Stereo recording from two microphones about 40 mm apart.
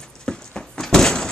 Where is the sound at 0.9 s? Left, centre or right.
Centre.